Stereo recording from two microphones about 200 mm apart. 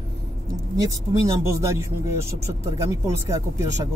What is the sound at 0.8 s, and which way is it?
Speech, 15° right (ahead or behind).